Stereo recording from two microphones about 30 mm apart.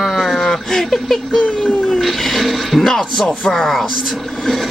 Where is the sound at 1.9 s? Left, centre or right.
Centre.